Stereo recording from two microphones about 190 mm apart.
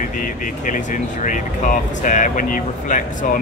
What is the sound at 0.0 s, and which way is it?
Speech, 45° left (ahead or behind).